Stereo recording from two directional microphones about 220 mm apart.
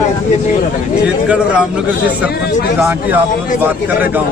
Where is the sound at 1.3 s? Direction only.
5° right (ahead or behind).